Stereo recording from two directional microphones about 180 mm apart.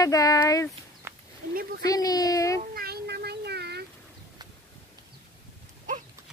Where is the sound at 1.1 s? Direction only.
15° right (ahead or behind).